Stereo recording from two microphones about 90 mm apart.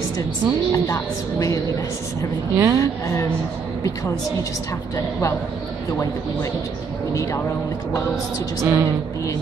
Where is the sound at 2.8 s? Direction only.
30° left (ahead or behind).